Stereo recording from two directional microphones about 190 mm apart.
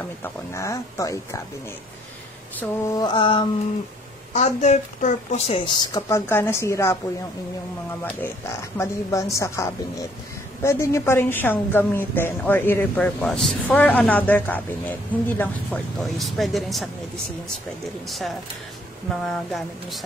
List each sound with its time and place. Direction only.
0.2 s a woman's voice: 15° left (ahead or behind)
3.0 s a sound: 25° left (ahead or behind)
4.3 s a woman's voice: 35° left (ahead or behind)
5.8 s a woman's voice: 20° left (ahead or behind)
8.0 s a woman's voice: 10° left (ahead or behind)
18.0 s speech: centre (ahead or behind)